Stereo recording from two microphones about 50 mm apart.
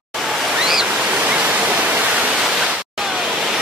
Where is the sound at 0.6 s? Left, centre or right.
Centre.